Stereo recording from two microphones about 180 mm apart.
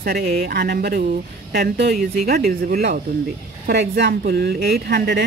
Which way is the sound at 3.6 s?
65° right (ahead or behind).